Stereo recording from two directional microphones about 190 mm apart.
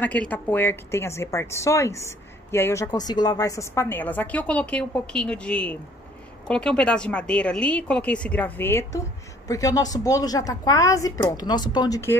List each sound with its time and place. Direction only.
0.0 s a woman's voice: 10° left (ahead or behind)